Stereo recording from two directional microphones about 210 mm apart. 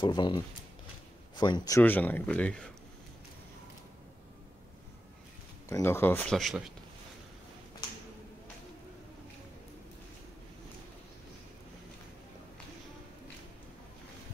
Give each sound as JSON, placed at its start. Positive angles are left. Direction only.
{"t": 0.0, "sound": "speech", "side_deg": 20}
{"t": 5.7, "sound": "speech", "side_deg": 10}